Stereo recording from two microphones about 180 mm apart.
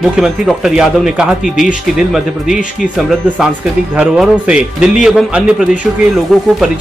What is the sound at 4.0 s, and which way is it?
A man's voice, 5° right (ahead or behind).